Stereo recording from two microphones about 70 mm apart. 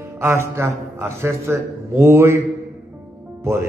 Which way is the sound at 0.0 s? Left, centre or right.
Right.